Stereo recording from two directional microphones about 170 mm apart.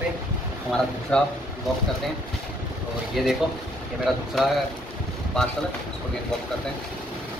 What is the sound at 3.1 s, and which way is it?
Speech, centre (ahead or behind).